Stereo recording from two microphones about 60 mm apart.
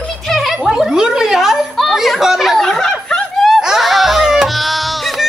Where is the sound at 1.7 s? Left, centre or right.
Centre.